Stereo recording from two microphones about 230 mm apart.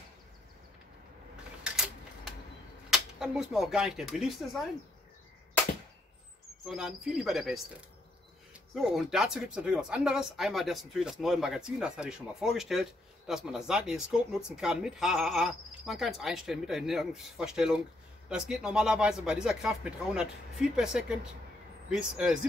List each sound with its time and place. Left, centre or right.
2.9 s speech: centre
6.6 s speech: centre
8.7 s speech: centre